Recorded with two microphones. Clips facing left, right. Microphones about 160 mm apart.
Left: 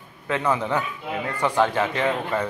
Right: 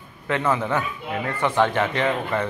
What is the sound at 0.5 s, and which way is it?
Speech, 15° left (ahead or behind).